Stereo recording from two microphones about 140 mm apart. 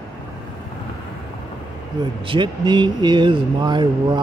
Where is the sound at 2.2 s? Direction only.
35° right (ahead or behind).